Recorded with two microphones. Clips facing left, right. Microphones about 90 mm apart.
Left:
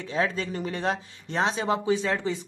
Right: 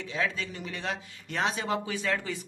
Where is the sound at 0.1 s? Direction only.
35° left (ahead or behind).